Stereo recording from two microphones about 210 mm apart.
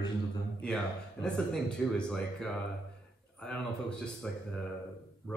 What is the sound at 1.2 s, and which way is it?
A man's voice, 5° left (ahead or behind).